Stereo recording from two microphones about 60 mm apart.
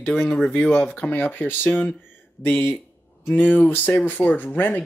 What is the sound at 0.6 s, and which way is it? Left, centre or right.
Speech, left.